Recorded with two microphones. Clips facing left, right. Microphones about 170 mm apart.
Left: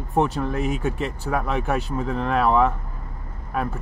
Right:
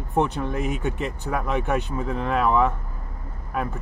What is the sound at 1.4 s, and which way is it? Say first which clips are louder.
Speech: right 1 dB; centre (ahead or behind).